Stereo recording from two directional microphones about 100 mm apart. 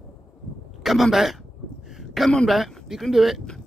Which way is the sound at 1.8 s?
Centre (ahead or behind).